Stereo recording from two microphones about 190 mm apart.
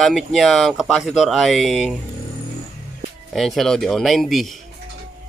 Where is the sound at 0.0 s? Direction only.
Centre (ahead or behind).